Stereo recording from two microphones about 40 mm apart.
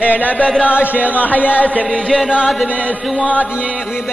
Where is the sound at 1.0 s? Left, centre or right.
Left.